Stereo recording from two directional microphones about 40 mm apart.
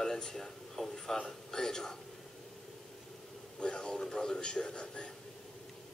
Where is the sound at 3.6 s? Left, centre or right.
Left.